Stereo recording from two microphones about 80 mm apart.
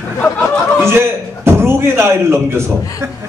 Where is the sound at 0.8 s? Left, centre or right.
Right.